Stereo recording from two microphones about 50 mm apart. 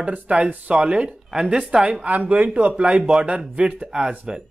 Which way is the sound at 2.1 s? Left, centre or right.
Right.